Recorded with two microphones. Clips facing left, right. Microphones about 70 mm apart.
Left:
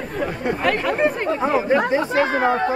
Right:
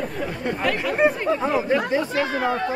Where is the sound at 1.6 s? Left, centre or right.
Left.